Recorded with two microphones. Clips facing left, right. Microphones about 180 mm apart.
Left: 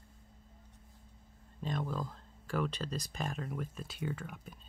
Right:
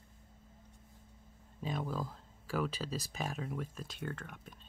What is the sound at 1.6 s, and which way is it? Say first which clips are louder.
Speech: left 1 dB; 5° right (ahead or behind).